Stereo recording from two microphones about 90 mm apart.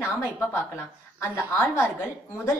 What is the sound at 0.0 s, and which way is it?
A woman's voice, 25° left (ahead or behind).